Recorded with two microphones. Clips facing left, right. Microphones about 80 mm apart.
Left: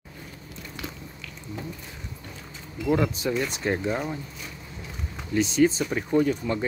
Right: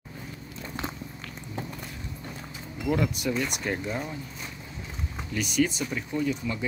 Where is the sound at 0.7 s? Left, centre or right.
Right.